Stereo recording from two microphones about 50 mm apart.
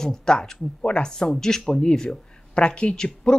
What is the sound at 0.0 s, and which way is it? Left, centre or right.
Speech, centre.